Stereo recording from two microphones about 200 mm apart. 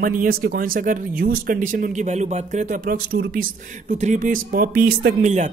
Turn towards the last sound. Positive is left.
turn(degrees=-35)  # may be behind; listen again after turning